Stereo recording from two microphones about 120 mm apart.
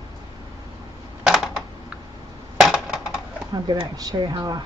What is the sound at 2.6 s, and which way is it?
Coin, centre (ahead or behind).